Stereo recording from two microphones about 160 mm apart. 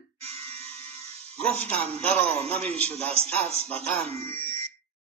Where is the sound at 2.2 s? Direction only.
40° right (ahead or behind).